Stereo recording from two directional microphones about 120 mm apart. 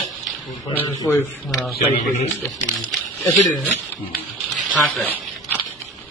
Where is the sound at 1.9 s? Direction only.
70° left (ahead or behind).